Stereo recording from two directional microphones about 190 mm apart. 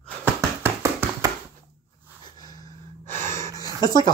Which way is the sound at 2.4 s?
20° left (ahead or behind).